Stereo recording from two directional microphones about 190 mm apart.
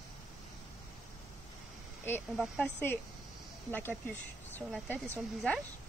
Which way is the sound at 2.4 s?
5° left (ahead or behind).